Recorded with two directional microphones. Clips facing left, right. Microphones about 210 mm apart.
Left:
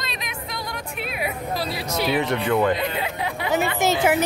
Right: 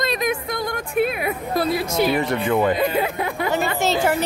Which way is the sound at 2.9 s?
50° right (ahead or behind).